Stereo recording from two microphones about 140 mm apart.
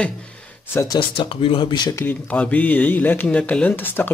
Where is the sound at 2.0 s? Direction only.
10° left (ahead or behind).